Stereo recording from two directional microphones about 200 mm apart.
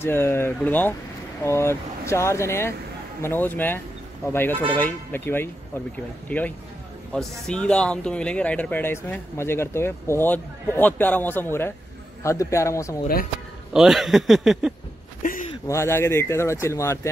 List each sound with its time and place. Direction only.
0.0 s speech: 10° left (ahead or behind)
13.7 s speech: centre (ahead or behind)
15.6 s speech: 15° left (ahead or behind)